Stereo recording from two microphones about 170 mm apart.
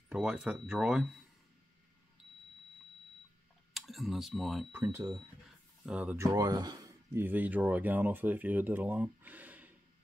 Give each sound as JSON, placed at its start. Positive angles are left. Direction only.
{"t": 0.1, "sound": "speech", "side_deg": -5}
{"t": 3.7, "sound": "speech", "side_deg": 0}
{"t": 4.8, "sound": "speech", "side_deg": -20}
{"t": 5.9, "sound": "speech", "side_deg": -10}
{"t": 6.2, "sound": "speech", "side_deg": -20}